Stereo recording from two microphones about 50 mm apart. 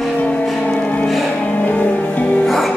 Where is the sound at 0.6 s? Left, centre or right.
Left.